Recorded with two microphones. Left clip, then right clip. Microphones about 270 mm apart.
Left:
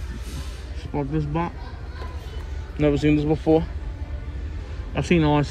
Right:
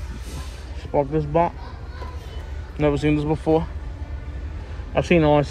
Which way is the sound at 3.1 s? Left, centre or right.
Right.